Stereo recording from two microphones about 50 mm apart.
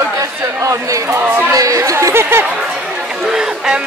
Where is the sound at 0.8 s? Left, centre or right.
Right.